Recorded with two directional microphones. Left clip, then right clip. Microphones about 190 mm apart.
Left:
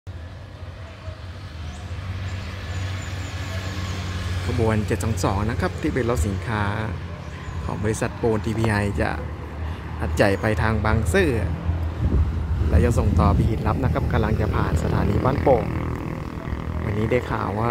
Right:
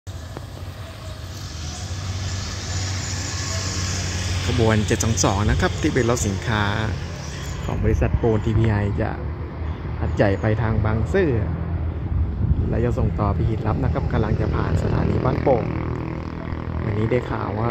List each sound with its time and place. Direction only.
3.3 s music: 50° left (ahead or behind); by 4.6 s 70° left (ahead or behind)
4.6 s speech: centre (ahead or behind)
12.7 s speech: 15° left (ahead or behind)
15.3 s speech: 35° left (ahead or behind)
16.8 s speech: 20° left (ahead or behind)